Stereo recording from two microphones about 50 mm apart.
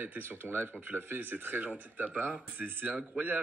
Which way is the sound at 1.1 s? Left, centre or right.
Right.